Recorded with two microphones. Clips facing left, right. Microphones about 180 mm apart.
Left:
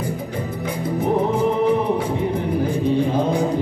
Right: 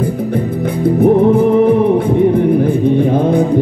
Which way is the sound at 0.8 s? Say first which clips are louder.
Right 11 dB; 60° right (ahead or behind).